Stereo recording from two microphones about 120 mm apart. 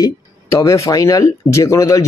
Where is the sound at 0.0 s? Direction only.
30° left (ahead or behind).